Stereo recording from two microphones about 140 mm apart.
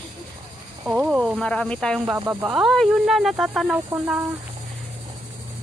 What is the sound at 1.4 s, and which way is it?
Speech, 10° left (ahead or behind).